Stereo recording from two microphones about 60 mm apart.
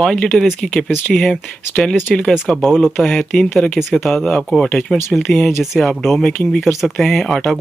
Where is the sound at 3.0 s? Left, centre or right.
Centre.